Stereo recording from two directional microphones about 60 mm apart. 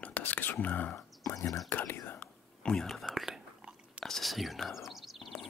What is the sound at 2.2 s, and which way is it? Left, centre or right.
Whispering, centre.